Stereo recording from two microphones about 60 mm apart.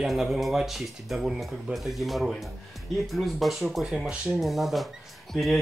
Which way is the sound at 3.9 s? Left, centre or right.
Centre.